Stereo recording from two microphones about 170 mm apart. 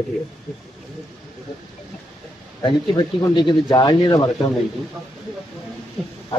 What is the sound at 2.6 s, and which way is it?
Speech, 30° left (ahead or behind).